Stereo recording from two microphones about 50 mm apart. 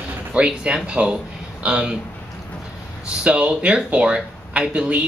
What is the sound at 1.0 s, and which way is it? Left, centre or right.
Speech, right.